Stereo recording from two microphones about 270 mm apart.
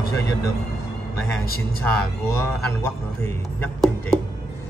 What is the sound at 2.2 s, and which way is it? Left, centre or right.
A man's voice, centre.